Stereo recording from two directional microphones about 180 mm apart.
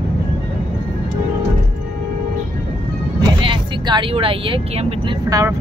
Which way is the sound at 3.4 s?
25° right (ahead or behind).